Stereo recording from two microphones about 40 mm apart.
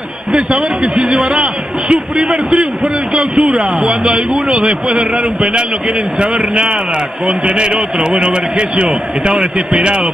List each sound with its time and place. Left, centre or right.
0.3 s a man's voice: right